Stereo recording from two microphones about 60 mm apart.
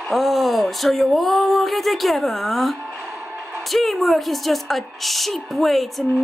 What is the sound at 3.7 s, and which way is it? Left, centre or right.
A woman's voice, centre.